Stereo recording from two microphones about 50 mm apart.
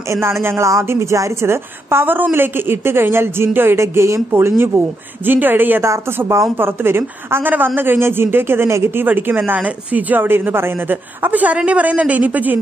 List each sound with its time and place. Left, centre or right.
0.1 s a woman's voice: right
0.7 s a woman's voice: right
4.3 s speech: right
5.9 s speech: right
6.6 s speech: right
10.2 s speech: right
11.5 s a woman's voice: right